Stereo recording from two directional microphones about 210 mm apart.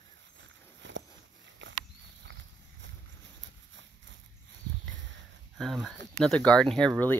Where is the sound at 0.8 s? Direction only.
60° right (ahead or behind).